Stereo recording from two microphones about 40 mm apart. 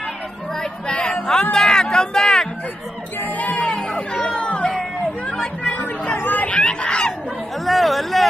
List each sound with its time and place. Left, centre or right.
0.6 s a sound: left
3.2 s music: left
3.6 s music: left
5.2 s chatter: left
6.1 s chatter: left
6.4 s chatter: left
7.6 s a sound: centre